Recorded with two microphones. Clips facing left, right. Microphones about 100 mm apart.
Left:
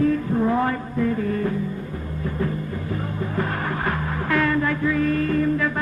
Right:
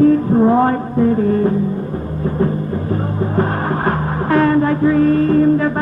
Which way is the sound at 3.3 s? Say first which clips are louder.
Right 7 dB; 40° right (ahead or behind).